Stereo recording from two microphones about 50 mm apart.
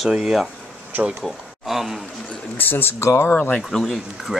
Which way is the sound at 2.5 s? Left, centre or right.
Left.